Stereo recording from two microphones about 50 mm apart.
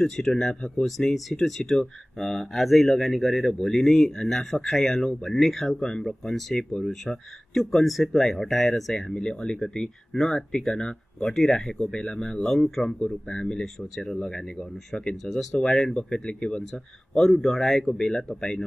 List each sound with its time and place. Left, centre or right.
0.0 s speech: centre
14.2 s speech: centre
15.2 s speech: centre
17.2 s speech: centre